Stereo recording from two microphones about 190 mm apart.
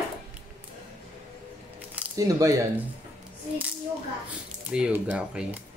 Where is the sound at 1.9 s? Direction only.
15° right (ahead or behind).